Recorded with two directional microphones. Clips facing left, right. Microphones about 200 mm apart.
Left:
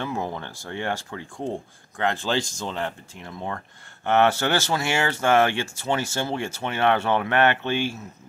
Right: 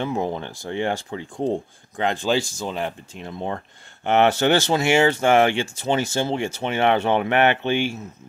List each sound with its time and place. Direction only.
0.0 s speech: 20° right (ahead or behind)
3.3 s speech: 25° right (ahead or behind)